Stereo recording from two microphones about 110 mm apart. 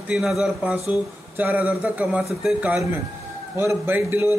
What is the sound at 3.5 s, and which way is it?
Speech, 25° right (ahead or behind).